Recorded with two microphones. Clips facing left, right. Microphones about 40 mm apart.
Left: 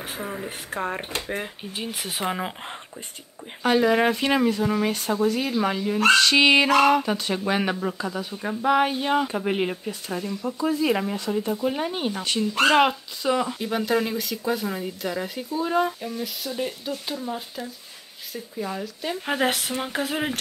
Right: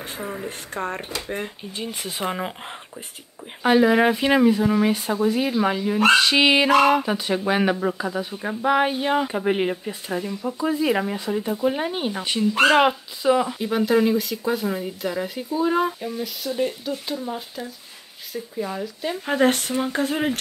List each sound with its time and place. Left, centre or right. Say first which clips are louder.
0.0 s speech: right 1 dB; centre
2.0 s speech: right 1 dB; centre